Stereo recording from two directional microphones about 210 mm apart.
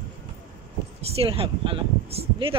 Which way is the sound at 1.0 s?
25° right (ahead or behind).